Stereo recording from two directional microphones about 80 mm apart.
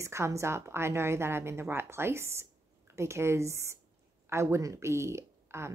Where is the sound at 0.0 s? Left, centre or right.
Right.